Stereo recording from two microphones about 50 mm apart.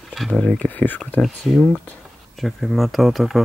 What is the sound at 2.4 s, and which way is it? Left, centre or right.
Speech, centre.